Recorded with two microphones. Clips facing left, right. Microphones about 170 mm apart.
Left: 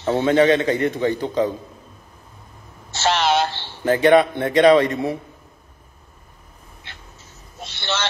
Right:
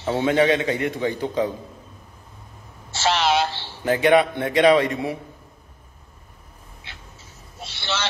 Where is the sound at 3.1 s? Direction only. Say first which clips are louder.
Left 2 dB; centre (ahead or behind).